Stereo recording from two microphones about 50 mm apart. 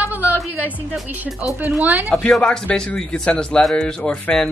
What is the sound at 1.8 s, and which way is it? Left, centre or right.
Speech, right.